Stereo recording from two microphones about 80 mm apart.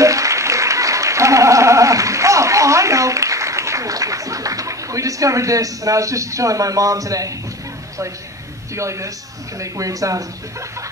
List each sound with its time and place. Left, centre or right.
0.0 s applause: right
8.7 s a man's voice: right